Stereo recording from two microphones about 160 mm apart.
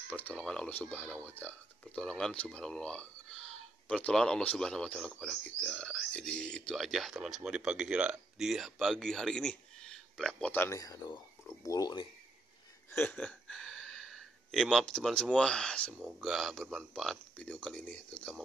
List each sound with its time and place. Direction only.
0.1 s speech: 10° left (ahead or behind); by 12.1 s 25° left (ahead or behind)
12.9 s a sound: 10° left (ahead or behind)
15.3 s speech: 5° left (ahead or behind)